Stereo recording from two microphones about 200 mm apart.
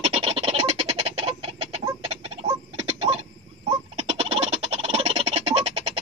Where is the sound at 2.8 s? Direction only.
30° right (ahead or behind).